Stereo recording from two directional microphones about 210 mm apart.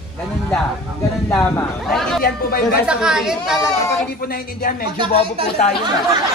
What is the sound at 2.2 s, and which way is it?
Speech, 45° left (ahead or behind).